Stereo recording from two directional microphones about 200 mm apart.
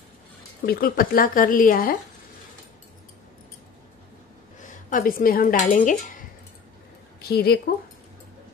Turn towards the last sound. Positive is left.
turn(degrees=50)  # may be behind; listen again after turning